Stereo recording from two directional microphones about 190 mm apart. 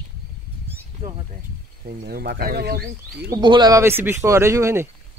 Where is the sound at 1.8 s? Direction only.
55° right (ahead or behind).